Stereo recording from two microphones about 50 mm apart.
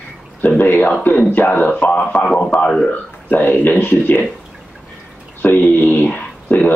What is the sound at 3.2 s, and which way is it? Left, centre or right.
Speech, left.